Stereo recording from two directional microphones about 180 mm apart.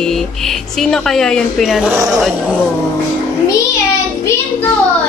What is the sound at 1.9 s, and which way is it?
Speech, 20° right (ahead or behind).